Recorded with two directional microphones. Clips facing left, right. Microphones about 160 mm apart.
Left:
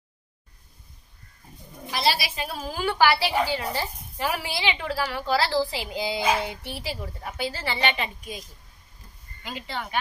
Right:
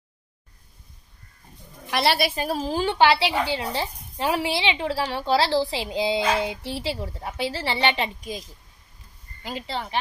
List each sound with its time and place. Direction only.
1.9 s a woman's voice: 65° right (ahead or behind); by 8.4 s 30° right (ahead or behind)
9.4 s a woman's voice: 35° right (ahead or behind)